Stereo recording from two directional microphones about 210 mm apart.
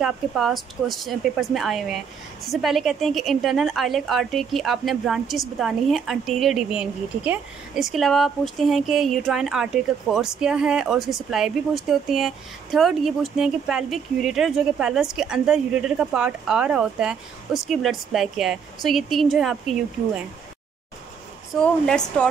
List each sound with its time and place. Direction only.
0.0 s speech: centre (ahead or behind)
21.5 s speech: 5° left (ahead or behind)